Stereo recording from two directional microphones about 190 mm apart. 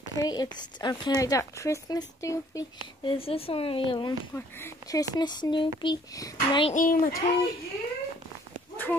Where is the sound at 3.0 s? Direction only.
30° left (ahead or behind).